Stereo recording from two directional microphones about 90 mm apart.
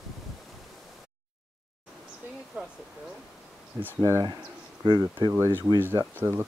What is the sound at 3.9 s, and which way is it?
Speech, 30° right (ahead or behind).